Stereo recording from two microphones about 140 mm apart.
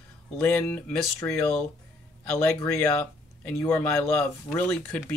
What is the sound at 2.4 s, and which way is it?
Speech, 20° left (ahead or behind).